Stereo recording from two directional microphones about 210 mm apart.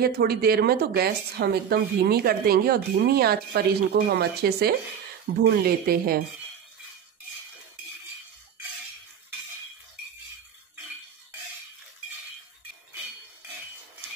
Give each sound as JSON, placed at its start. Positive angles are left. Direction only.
{"t": 0.0, "sound": "speech", "side_deg": -45}